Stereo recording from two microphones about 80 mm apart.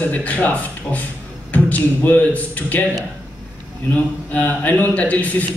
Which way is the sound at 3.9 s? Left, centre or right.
Centre.